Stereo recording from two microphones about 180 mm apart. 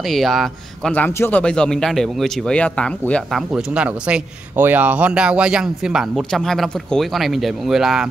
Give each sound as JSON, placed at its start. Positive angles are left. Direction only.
{"t": 0.0, "sound": "speech", "side_deg": 0}